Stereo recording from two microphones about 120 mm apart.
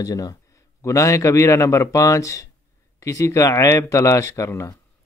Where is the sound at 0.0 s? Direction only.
30° left (ahead or behind).